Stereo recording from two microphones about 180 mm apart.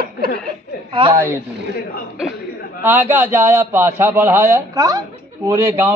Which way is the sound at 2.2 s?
Centre (ahead or behind).